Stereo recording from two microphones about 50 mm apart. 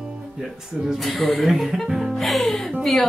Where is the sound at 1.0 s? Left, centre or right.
Centre.